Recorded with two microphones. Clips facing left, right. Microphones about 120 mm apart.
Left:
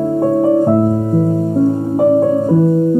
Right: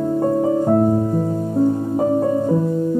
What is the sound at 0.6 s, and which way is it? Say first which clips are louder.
Music: left 3 dB; 30° left (ahead or behind).